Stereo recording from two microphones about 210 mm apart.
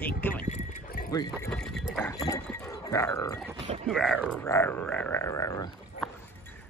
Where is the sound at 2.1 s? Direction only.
15° left (ahead or behind).